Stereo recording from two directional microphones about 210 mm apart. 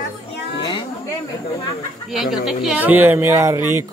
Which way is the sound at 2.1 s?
Centre (ahead or behind).